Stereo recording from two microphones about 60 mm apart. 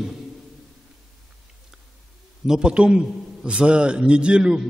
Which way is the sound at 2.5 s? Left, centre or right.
Centre.